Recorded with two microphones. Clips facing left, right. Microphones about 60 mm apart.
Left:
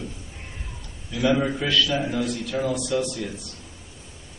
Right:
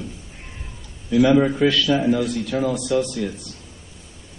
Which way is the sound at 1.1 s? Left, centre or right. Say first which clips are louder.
Right 7 dB; centre.